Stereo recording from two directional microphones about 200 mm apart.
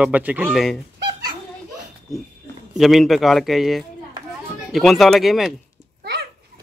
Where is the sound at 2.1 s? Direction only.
Centre (ahead or behind).